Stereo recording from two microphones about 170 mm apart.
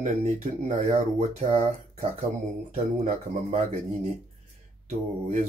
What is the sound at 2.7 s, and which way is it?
Speech, 40° right (ahead or behind).